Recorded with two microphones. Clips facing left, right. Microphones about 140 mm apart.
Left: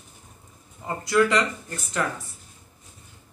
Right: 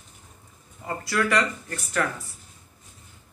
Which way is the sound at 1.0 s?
20° left (ahead or behind).